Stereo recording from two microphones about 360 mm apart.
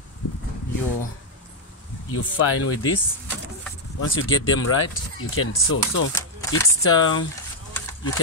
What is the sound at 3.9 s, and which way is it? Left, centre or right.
Speech, left.